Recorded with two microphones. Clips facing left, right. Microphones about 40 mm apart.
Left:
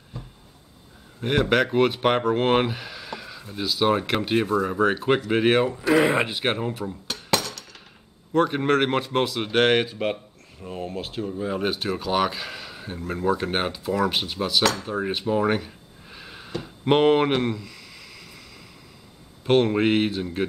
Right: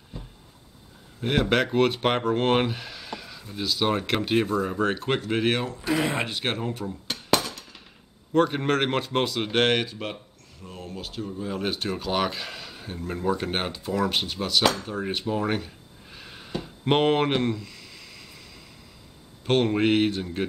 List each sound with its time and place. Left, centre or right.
1.2 s speech: centre
8.3 s speech: centre
9.8 s speech: centre
10.6 s speech: left
11.7 s speech: centre
14.9 s a sound: centre
19.4 s speech: centre